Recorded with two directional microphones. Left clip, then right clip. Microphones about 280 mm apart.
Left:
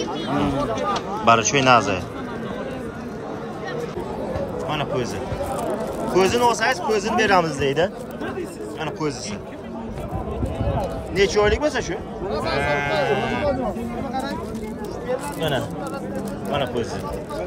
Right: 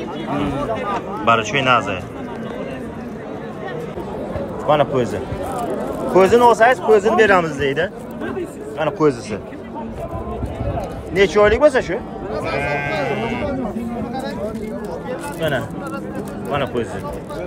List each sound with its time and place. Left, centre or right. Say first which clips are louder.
1.2 s speech: even; centre
4.6 s speech: right 12 dB; centre
6.1 s speech: right 7 dB; centre
8.7 s a man's voice: right 10 dB; centre
11.1 s speech: right 5 dB; centre
12.3 s sheep: even; left